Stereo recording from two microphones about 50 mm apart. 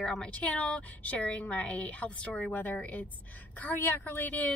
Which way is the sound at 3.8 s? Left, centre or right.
Left.